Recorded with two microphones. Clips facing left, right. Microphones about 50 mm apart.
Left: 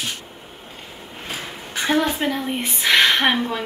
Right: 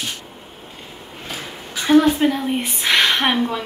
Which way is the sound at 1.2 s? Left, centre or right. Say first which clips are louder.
Even; left.